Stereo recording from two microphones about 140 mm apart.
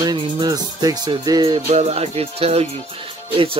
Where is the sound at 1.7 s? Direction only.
50° right (ahead or behind).